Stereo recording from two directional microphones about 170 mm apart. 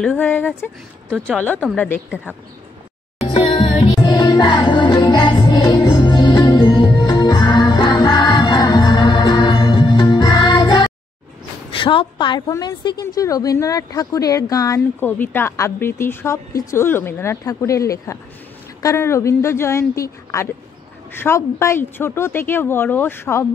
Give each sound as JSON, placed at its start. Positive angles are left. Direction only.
{"t": 0.0, "sound": "speech", "side_deg": 10}
{"t": 3.2, "sound": "music", "side_deg": 35}
{"t": 11.7, "sound": "a woman's voice", "side_deg": 30}